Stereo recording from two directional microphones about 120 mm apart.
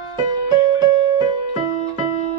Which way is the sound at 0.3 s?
35° right (ahead or behind).